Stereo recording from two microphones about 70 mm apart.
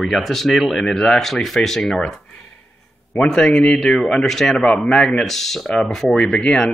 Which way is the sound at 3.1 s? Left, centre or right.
Centre.